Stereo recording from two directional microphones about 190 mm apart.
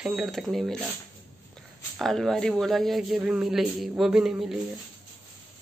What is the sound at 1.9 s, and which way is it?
A man's voice, centre (ahead or behind).